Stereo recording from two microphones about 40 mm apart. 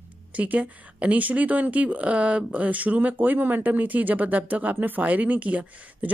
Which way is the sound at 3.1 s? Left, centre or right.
Right.